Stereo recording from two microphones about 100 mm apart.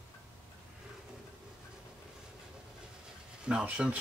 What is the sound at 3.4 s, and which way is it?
Speech, 10° right (ahead or behind).